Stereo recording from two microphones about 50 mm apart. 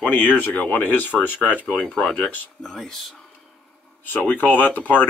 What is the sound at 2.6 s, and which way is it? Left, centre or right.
Speech, centre.